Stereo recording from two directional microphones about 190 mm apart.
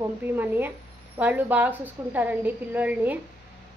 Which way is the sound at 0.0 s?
10° right (ahead or behind).